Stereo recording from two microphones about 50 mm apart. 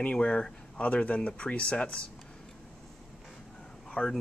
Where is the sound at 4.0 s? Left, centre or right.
Centre.